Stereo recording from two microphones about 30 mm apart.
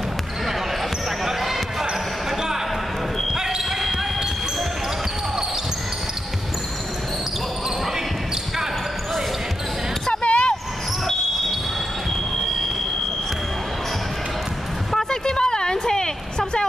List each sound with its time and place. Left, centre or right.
1.2 s basketball bounce: centre
3.3 s basketball bounce: centre
10.2 s basketball bounce: left
15.0 s a sound: left